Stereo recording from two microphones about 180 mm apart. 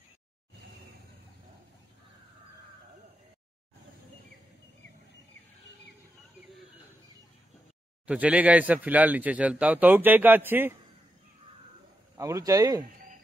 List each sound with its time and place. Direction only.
8.1 s a man's voice: 5° right (ahead or behind)
12.2 s a man's voice: 20° right (ahead or behind)